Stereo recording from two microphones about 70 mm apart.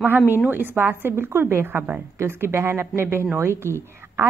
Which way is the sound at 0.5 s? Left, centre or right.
Right.